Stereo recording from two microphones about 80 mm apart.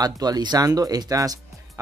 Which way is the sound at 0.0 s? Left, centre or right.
Right.